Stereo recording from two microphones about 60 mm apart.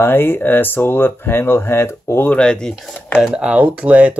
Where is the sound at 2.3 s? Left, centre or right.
Centre.